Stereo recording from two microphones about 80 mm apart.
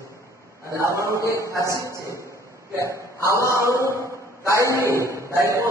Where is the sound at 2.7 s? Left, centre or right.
Right.